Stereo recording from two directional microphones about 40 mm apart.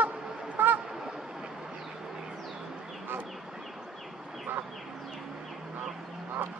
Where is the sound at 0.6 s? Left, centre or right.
Right.